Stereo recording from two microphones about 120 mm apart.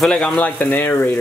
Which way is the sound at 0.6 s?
15° left (ahead or behind).